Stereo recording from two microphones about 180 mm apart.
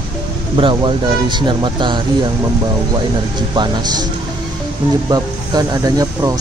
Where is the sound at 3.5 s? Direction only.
25° right (ahead or behind).